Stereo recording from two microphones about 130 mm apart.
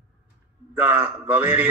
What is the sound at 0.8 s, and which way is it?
Speech, 15° right (ahead or behind).